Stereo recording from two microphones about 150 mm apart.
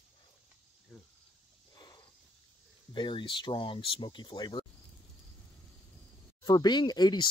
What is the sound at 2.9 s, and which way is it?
Speech, 30° left (ahead or behind).